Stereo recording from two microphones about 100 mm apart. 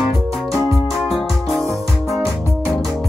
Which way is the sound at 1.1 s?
Centre (ahead or behind).